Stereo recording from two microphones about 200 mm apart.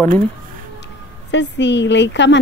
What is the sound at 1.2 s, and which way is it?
A woman's voice, 60° left (ahead or behind).